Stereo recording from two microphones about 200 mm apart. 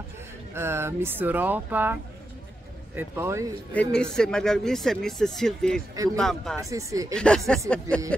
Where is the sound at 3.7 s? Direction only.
5° left (ahead or behind).